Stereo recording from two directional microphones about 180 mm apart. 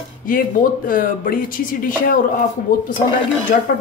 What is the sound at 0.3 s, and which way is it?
Speech, 50° left (ahead or behind).